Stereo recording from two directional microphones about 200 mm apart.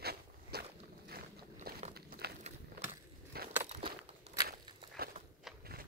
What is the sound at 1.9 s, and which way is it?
Crumpling, 50° right (ahead or behind).